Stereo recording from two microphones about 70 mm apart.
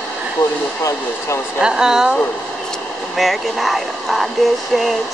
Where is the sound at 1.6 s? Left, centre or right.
Centre.